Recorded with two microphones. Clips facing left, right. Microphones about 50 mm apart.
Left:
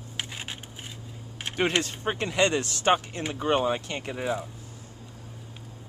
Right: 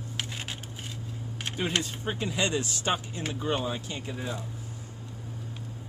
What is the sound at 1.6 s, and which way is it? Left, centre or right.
Speech, left.